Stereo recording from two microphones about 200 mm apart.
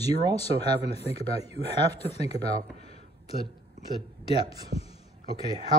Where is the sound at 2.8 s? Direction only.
30° left (ahead or behind).